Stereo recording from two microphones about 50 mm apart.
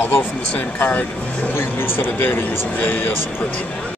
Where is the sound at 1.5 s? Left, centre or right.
Left.